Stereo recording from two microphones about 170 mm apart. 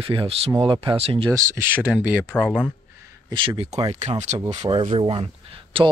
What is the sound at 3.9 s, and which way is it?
Speech, 40° right (ahead or behind).